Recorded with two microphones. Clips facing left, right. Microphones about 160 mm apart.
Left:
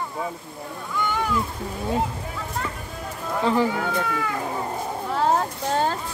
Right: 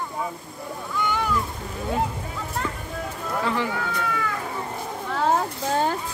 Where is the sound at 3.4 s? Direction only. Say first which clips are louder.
Left 6 dB; 35° left (ahead or behind).